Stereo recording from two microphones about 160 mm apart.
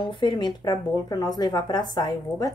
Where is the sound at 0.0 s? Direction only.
30° left (ahead or behind).